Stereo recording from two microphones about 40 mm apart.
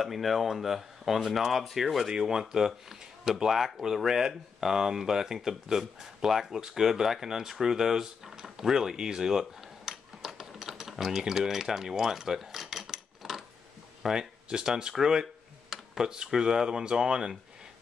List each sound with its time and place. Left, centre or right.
0.0 s speech: centre
2.0 s speech: centre